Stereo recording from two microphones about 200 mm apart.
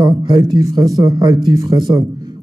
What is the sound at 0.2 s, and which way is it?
A man's voice, 20° right (ahead or behind).